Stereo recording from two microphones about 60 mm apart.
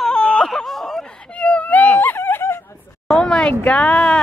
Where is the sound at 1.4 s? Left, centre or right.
Left.